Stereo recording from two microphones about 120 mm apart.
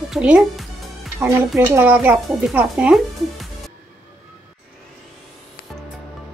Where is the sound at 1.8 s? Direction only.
15° right (ahead or behind).